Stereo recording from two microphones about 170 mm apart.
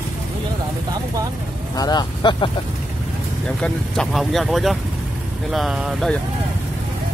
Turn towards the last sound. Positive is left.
turn(degrees=0)  # may be behind; listen again after turning